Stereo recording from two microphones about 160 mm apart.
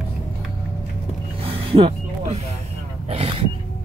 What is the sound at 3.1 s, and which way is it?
Speech, 35° right (ahead or behind).